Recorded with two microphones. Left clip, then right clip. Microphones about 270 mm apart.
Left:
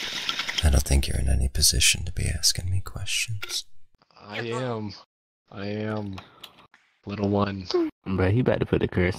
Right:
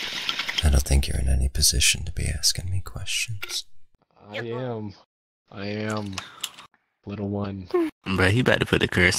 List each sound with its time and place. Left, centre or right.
0.0 s speech: centre
4.5 s speech: left
5.5 s speech: centre
6.0 s typing: right
7.1 s speech: left
7.7 s speech: right